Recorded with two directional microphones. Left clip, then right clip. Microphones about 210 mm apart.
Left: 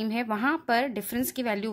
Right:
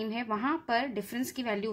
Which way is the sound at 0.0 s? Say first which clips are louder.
Left 4 dB; 30° left (ahead or behind).